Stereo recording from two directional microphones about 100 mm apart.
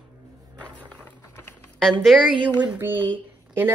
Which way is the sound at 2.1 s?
Centre (ahead or behind).